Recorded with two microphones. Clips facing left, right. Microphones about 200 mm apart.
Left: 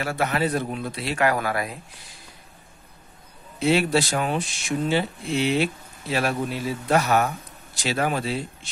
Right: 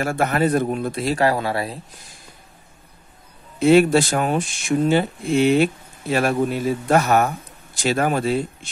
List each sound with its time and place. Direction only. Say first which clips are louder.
0.0 s speech: right 4 dB; 50° right (ahead or behind); by 2.0 s 30° right (ahead or behind)
3.5 s speech: right 7 dB; 50° right (ahead or behind)